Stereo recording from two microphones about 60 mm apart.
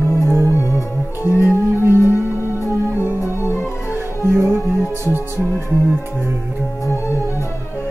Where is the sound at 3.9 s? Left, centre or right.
Right.